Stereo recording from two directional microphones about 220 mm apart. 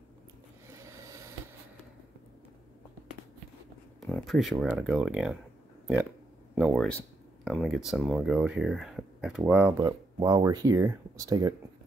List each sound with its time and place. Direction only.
0.7 s a sound: 15° right (ahead or behind)
4.0 s speech: centre (ahead or behind)
6.5 s speech: 5° right (ahead or behind)